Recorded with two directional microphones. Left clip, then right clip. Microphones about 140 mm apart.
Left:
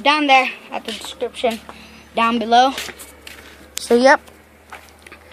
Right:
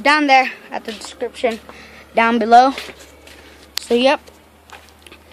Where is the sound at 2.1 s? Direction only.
35° right (ahead or behind).